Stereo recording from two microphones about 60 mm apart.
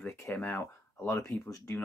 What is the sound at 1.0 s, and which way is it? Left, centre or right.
Speech, left.